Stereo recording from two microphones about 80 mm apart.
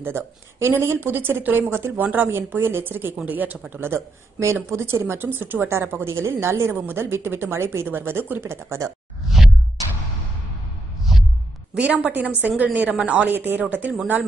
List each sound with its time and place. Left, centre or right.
0.0 s a woman's voice: right
11.1 s a sound: centre
11.7 s a woman's voice: centre